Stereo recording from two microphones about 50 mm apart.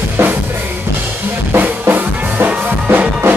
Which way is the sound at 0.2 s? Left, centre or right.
Right.